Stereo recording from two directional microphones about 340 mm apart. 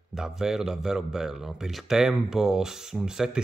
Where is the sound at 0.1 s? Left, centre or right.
Centre.